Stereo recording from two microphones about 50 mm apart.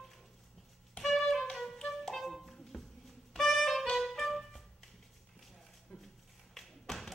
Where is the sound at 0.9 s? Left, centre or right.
Centre.